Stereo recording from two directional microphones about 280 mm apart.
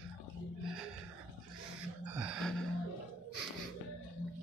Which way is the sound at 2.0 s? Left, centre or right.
Centre.